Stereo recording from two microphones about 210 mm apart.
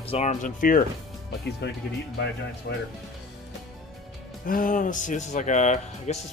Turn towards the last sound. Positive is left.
turn(degrees=35)  # may be behind; listen again after turning